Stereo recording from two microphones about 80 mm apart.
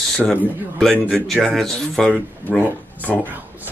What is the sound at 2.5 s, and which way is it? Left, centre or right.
Speech, left.